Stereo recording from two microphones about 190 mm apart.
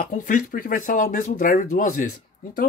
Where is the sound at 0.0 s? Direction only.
45° left (ahead or behind).